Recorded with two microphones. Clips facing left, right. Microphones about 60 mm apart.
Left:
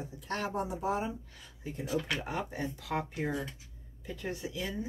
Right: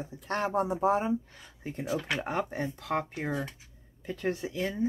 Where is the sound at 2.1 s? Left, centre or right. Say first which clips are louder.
Right 4 dB; right.